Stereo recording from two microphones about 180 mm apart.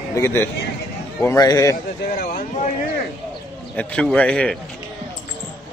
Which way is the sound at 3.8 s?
5° left (ahead or behind).